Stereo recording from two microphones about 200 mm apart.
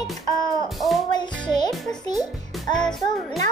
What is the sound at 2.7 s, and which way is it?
Music, 5° left (ahead or behind).